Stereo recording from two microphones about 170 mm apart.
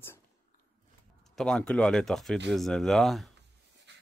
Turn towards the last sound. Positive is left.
turn(degrees=0)  # may be behind; listen again after turning